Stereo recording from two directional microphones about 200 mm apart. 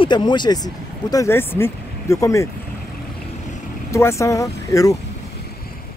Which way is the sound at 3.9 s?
15° left (ahead or behind).